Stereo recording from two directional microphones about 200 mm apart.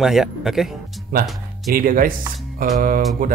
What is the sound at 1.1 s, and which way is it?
Speech, 45° right (ahead or behind).